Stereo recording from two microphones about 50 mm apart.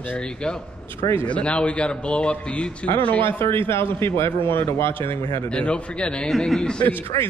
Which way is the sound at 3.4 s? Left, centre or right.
Left.